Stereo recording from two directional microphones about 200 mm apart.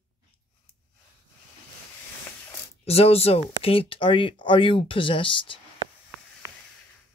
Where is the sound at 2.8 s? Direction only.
30° left (ahead or behind).